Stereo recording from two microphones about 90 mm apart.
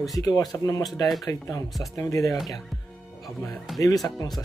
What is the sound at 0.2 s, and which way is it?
Speech, 45° left (ahead or behind).